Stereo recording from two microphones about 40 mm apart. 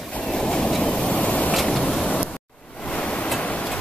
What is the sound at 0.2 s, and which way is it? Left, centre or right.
Train, left.